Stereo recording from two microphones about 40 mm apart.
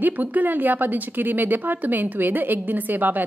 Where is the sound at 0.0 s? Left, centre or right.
Right.